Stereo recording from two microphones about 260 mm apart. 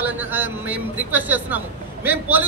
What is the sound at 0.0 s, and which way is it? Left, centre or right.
A man's voice, centre.